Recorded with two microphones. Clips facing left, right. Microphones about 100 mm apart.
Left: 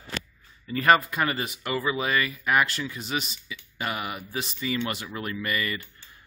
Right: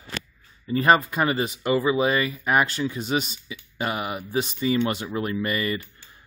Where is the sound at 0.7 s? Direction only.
25° right (ahead or behind).